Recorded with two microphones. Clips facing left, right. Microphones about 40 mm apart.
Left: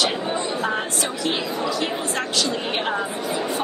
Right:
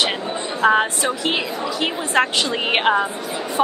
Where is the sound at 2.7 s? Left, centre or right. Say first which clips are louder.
Right 7 dB; right.